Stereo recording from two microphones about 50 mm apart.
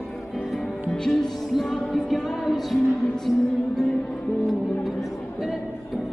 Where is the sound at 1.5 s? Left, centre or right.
Centre.